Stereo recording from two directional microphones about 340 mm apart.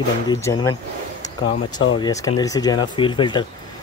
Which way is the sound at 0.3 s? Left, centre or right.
Centre.